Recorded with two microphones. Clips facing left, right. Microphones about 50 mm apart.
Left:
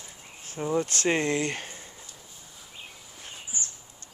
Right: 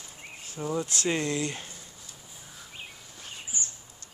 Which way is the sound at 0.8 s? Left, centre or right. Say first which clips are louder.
Left 3 dB; left.